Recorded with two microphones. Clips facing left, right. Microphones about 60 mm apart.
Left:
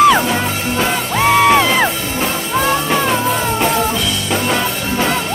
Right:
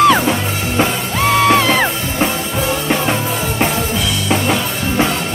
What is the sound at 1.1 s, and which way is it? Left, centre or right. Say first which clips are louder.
Music: left 2 dB; centre.